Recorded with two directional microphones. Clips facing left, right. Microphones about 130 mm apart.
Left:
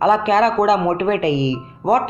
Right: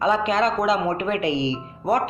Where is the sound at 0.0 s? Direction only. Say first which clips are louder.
Left 6 dB; 45° left (ahead or behind).